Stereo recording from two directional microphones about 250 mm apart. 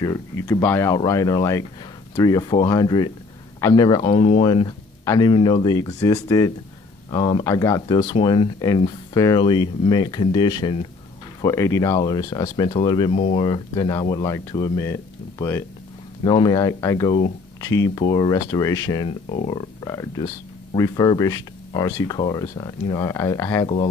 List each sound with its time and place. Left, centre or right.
0.0 s speech: centre